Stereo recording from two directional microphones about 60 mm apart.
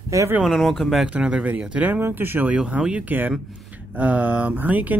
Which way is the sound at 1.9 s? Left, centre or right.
Right.